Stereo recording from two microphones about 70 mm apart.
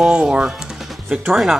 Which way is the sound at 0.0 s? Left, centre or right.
Centre.